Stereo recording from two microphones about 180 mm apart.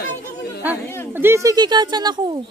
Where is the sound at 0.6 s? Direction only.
10° right (ahead or behind).